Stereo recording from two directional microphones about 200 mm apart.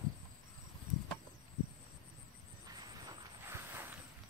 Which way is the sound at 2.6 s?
20° right (ahead or behind).